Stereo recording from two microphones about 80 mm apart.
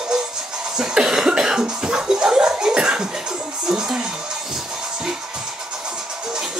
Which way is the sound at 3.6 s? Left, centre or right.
Centre.